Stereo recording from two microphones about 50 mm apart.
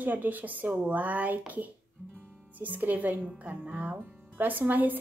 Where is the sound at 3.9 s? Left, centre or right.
Right.